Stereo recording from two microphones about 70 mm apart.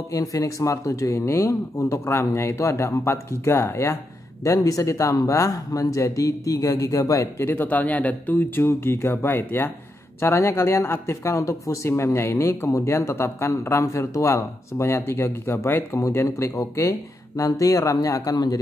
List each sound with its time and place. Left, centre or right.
0.1 s speech: left
4.5 s speech: left
7.4 s speech: left
8.6 s speech: left
18.3 s speech: left